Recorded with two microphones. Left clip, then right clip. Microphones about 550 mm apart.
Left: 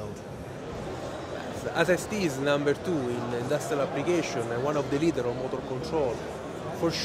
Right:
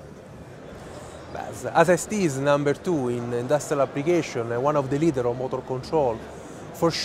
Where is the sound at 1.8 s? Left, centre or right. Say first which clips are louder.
Right 6 dB; right.